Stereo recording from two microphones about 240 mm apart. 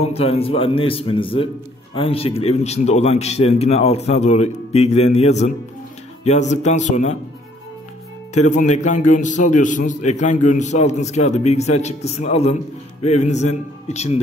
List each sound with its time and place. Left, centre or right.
0.0 s a man's voice: left
8.4 s a man's voice: left